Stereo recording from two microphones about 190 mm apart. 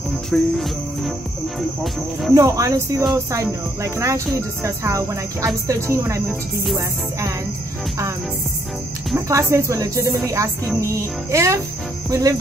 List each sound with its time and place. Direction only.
0.3 s music: centre (ahead or behind)
2.3 s speech: 15° right (ahead or behind)
9.3 s speech: 15° right (ahead or behind)